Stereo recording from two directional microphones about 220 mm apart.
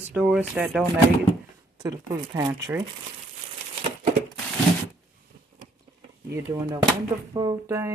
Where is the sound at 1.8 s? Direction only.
20° right (ahead or behind).